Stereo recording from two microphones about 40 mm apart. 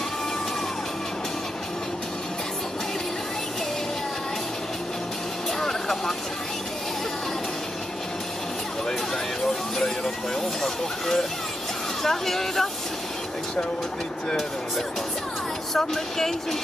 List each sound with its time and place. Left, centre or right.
5.6 s vehicle: centre
10.6 s speech: centre
15.7 s speech: centre